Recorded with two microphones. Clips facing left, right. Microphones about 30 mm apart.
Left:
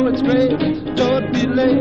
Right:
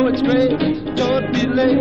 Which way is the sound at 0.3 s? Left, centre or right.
Centre.